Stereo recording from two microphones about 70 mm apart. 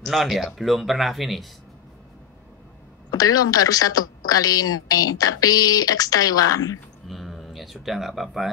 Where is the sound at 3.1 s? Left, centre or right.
Left.